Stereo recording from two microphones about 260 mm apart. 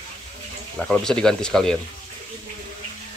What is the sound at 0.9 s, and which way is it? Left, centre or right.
Speech, centre.